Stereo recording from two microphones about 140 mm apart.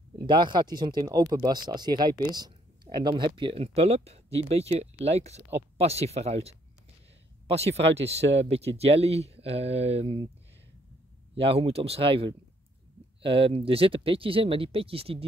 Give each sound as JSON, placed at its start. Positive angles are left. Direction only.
{"t": 0.2, "sound": "speech", "side_deg": -30}
{"t": 2.3, "sound": "a sound", "side_deg": -30}
{"t": 3.2, "sound": "speech", "side_deg": -35}
{"t": 11.3, "sound": "speech", "side_deg": -45}